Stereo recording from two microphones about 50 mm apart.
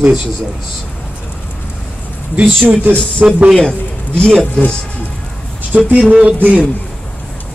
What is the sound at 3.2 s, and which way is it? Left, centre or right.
Speech, right.